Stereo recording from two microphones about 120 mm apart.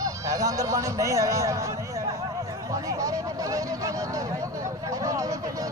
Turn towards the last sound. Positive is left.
turn(degrees=-30)  # may be behind; listen again after turning